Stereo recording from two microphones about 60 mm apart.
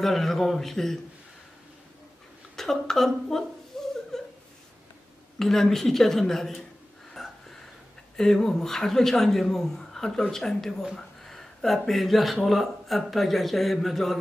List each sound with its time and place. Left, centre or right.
0.0 s a man's voice: centre
2.5 s a man's voice: centre
3.7 s chuckle: centre
4.1 s laughter: centre
5.4 s a man's voice: centre
7.2 s a sound: centre
8.2 s a man's voice: centre